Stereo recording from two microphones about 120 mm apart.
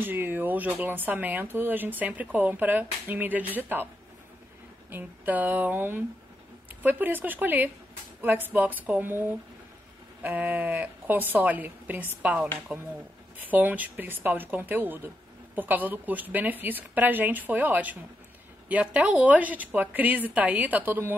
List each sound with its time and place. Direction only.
0.0 s speech: 15° right (ahead or behind)
10.2 s speech: 15° right (ahead or behind)